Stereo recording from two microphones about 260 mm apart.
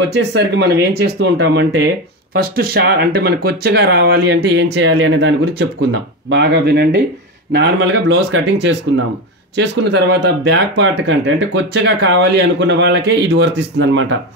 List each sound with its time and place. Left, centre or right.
0.0 s speech: right